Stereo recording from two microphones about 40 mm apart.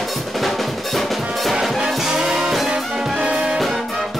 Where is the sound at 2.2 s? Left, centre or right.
Centre.